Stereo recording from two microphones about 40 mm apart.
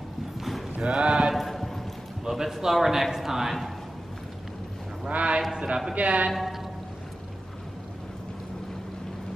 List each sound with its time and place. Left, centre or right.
0.4 s clip-clop: centre
0.7 s a sound: right
1.3 s clip-clop: centre
2.2 s a man's voice: centre
5.1 s a man's voice: right
6.3 s a sound: centre